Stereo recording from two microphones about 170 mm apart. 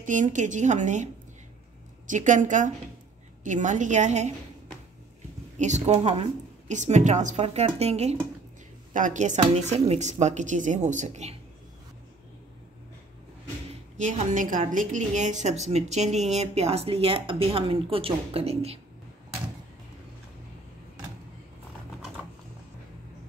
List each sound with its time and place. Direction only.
0.0 s a woman's voice: 50° right (ahead or behind)
5.6 s a woman's voice: 45° right (ahead or behind)
13.9 s a woman's voice: 45° right (ahead or behind)